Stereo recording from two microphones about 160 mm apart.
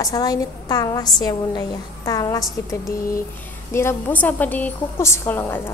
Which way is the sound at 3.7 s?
15° left (ahead or behind).